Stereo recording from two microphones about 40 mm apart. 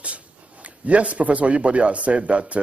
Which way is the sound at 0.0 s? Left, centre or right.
Right.